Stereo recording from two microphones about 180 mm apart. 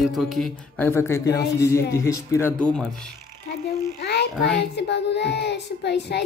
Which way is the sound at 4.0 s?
70° left (ahead or behind).